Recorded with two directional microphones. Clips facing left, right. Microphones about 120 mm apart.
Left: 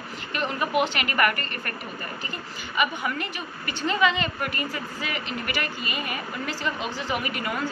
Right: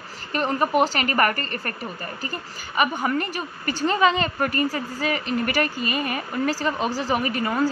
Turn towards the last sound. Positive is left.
turn(degrees=-35)  # may be behind; listen again after turning